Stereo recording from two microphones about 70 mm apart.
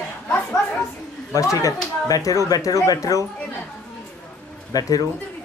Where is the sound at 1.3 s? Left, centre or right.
Left.